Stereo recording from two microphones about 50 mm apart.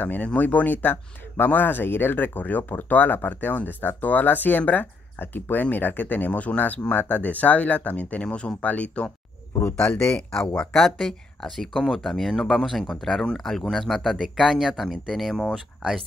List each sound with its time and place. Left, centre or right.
0.0 s speech: left; by 15.3 s centre